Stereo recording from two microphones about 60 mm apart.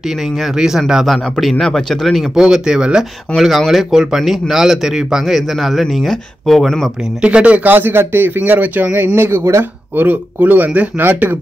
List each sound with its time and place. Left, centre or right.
0.4 s speech: centre
1.4 s speech: centre
2.3 s speech: centre
3.3 s speech: centre
7.2 s speech: centre
7.7 s speech: right
8.4 s speech: right
9.9 s speech: right